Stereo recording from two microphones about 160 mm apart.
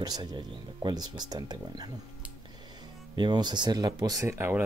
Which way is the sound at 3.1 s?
25° right (ahead or behind).